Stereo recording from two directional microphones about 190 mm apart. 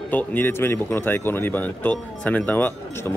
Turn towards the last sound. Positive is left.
turn(degrees=10)  # may be behind; listen again after turning